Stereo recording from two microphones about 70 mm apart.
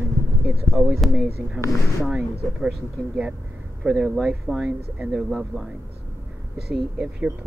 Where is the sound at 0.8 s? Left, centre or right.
Right.